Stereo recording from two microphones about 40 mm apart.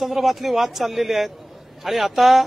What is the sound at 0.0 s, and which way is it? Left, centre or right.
Speech, centre.